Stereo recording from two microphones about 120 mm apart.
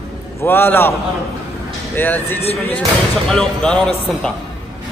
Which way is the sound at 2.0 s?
15° left (ahead or behind).